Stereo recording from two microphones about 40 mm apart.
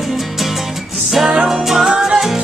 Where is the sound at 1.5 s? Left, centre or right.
Centre.